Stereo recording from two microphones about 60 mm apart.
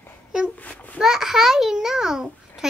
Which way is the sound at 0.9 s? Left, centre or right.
Centre.